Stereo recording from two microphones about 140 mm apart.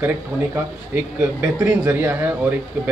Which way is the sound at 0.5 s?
15° right (ahead or behind).